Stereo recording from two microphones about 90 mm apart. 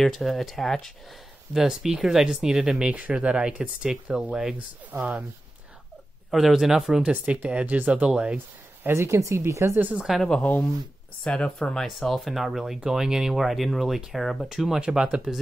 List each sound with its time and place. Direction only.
0.0 s speech: centre (ahead or behind); by 5.2 s 20° right (ahead or behind)
6.3 s speech: 5° right (ahead or behind)
8.8 s speech: 30° right (ahead or behind)
9.8 s speech: 20° right (ahead or behind)
10.2 s speech: 5° left (ahead or behind); by 15.3 s 10° right (ahead or behind)